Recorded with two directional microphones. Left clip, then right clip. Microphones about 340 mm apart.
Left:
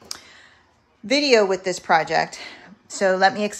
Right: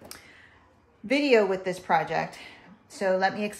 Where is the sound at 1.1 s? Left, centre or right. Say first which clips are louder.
Left 5 dB; centre.